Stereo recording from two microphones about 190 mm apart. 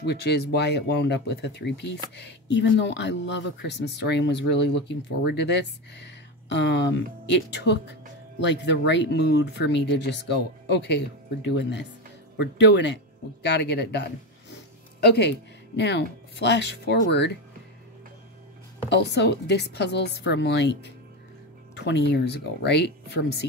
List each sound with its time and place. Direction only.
0.0 s speech: 60° left (ahead or behind)
18.9 s speech: 65° left (ahead or behind)